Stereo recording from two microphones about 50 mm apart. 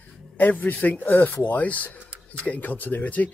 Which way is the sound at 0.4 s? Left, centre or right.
Left.